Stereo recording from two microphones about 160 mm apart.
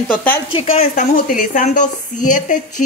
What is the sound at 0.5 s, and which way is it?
Speech, 40° left (ahead or behind).